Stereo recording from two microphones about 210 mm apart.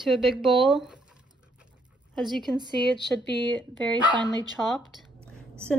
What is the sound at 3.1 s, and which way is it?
Speech, 5° left (ahead or behind).